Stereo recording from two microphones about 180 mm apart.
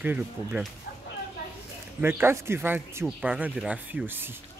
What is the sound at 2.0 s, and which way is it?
Speech, 10° right (ahead or behind).